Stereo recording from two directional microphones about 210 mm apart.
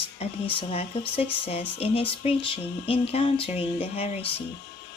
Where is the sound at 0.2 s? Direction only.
30° left (ahead or behind).